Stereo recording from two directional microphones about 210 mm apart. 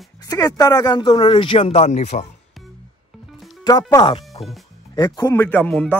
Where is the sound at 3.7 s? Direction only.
20° left (ahead or behind).